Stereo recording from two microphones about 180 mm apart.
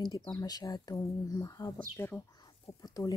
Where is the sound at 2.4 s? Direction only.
20° left (ahead or behind).